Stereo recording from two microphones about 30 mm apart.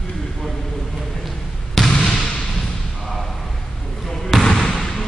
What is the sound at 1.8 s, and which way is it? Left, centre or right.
Basketball bounce, centre.